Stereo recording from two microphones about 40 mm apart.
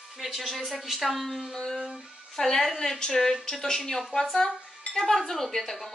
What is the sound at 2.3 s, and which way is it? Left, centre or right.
A woman's voice, centre.